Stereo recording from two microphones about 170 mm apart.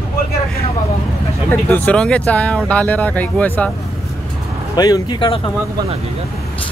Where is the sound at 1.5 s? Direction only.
10° left (ahead or behind).